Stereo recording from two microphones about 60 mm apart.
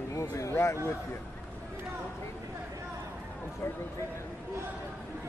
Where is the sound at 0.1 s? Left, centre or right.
Left.